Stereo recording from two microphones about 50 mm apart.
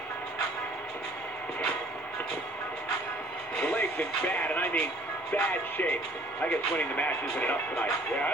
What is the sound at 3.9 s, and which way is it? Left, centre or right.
Speech, left.